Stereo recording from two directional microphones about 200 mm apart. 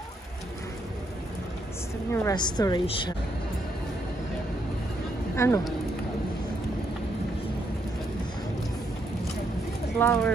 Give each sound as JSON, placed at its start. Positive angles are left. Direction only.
{"t": 2.2, "sound": "a woman's voice", "side_deg": 20}
{"t": 5.3, "sound": "speech", "side_deg": 15}
{"t": 9.9, "sound": "speech", "side_deg": 10}